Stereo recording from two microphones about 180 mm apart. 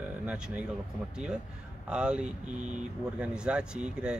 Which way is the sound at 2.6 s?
40° right (ahead or behind).